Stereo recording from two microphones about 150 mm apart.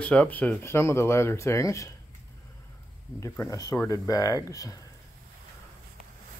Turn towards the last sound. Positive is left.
turn(degrees=20)  # may be behind; listen again after turning